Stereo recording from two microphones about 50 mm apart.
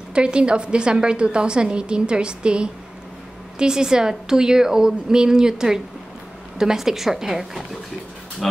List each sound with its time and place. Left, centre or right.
0.1 s a woman's voice: centre